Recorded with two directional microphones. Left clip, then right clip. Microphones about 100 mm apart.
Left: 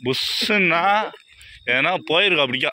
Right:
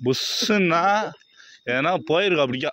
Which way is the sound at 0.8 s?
75° right (ahead or behind).